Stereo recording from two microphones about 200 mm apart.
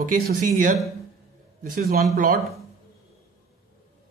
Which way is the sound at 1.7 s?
50° right (ahead or behind).